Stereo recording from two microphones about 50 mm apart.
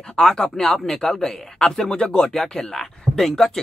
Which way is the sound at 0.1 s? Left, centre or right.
Centre.